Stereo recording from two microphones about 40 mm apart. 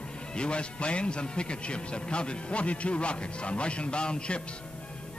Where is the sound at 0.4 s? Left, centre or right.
Left.